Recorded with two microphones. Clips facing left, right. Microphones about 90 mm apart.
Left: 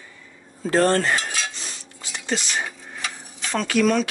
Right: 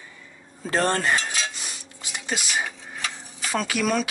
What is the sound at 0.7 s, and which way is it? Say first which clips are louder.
Cutlery: left 4 dB; 15° right (ahead or behind).